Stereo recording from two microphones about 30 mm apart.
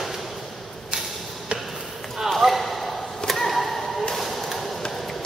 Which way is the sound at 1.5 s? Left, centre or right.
Right.